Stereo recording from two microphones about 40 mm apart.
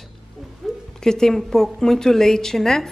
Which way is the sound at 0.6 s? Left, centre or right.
Centre.